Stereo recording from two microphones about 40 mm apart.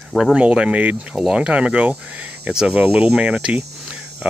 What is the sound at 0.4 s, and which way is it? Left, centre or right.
Speech, right.